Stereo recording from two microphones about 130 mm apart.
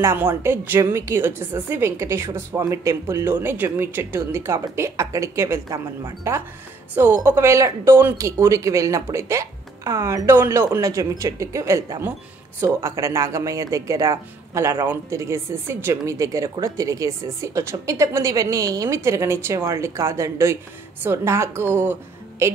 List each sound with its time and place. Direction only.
0.0 s a woman's voice: 15° right (ahead or behind)